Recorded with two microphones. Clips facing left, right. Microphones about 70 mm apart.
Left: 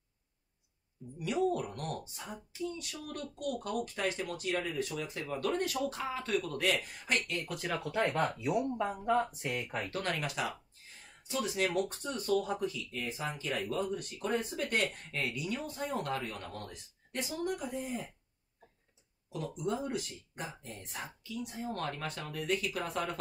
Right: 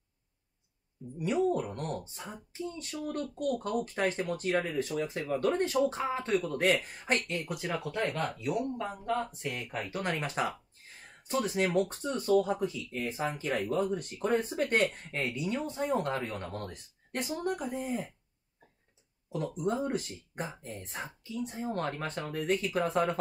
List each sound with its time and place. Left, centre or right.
1.1 s speech: right
7.5 s speech: centre
8.0 s speech: centre
10.2 s speech: right
14.3 s speech: right
15.0 s speech: right
19.3 s speech: right